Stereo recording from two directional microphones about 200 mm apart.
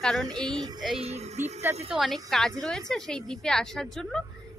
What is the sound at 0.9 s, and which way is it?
Child singing, 30° right (ahead or behind).